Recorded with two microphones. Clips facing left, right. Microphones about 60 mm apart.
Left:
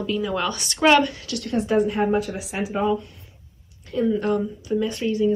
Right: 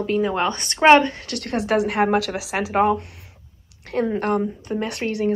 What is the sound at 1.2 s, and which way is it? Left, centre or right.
Speech, right.